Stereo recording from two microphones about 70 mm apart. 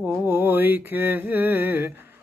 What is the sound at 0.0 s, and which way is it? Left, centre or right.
Mantra, right.